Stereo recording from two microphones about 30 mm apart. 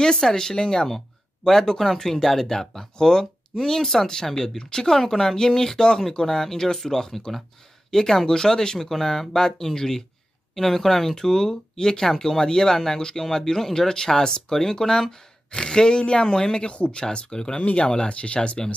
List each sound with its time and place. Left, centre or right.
0.2 s speech: centre
4.9 s speech: centre
16.6 s speech: left